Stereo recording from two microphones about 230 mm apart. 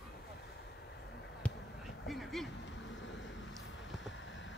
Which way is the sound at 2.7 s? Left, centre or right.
Left.